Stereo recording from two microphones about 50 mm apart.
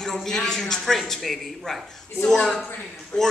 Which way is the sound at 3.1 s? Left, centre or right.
Left.